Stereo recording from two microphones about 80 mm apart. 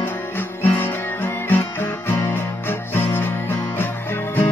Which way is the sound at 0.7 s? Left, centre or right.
Left.